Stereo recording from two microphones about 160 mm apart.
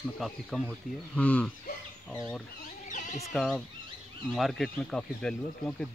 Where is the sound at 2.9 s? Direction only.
50° left (ahead or behind).